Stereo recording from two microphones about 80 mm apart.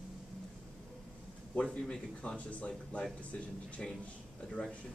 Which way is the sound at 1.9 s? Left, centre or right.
Centre.